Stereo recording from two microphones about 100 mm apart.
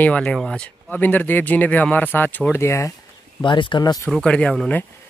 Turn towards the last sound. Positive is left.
turn(degrees=10)  # may be behind; listen again after turning